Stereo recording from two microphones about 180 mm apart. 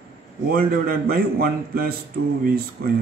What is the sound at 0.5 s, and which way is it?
A man's voice, 55° right (ahead or behind).